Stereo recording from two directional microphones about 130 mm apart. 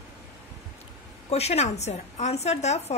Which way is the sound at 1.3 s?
55° left (ahead or behind).